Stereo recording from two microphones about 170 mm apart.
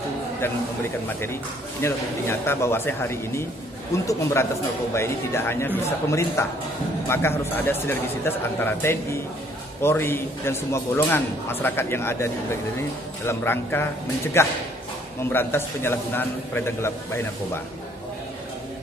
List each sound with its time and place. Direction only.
1.2 s a man's voice: 15° left (ahead or behind)